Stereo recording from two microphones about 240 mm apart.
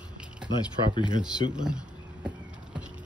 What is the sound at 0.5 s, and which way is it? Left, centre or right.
Speech, centre.